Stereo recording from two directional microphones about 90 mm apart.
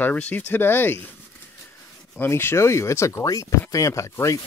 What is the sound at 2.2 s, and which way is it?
Speech, 25° left (ahead or behind).